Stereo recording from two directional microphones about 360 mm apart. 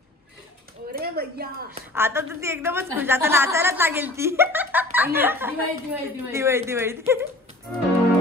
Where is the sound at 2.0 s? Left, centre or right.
Centre.